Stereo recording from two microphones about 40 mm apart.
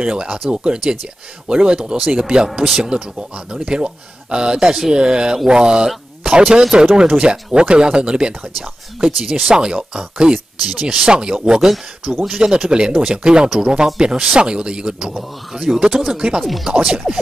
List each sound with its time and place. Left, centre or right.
0.0 s speech: centre
15.1 s speech: centre
16.4 s speech: centre
16.7 s speech: centre